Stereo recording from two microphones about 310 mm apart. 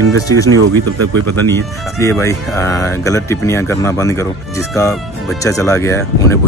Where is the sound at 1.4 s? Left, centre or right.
Centre.